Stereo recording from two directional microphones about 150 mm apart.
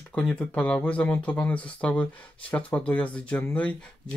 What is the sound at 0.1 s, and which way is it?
Speech, 5° left (ahead or behind).